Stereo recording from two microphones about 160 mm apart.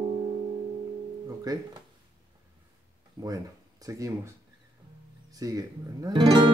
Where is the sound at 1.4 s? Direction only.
25° right (ahead or behind).